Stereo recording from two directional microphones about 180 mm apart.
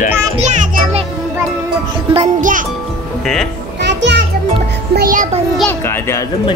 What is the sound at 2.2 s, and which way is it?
Music, 45° right (ahead or behind).